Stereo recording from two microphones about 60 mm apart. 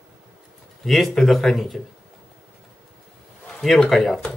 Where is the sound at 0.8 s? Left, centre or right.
Centre.